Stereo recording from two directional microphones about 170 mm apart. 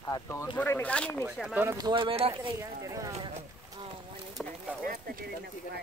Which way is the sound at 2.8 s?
20° right (ahead or behind).